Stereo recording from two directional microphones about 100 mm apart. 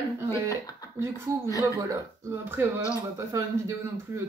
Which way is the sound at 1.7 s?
30° right (ahead or behind).